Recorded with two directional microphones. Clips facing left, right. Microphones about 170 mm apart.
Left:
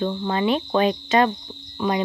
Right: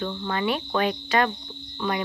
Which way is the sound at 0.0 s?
25° left (ahead or behind).